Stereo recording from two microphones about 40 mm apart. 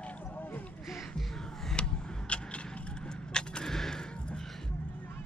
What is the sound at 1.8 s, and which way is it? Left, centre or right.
Vehicle, left.